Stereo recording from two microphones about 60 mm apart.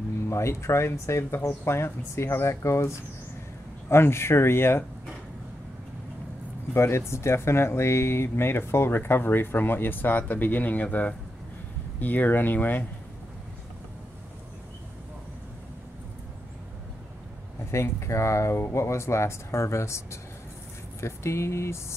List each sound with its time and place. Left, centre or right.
0.3 s speech: left
6.7 s speech: left
17.6 s speech: left